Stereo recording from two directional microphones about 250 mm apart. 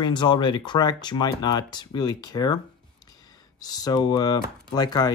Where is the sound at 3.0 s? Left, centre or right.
Centre.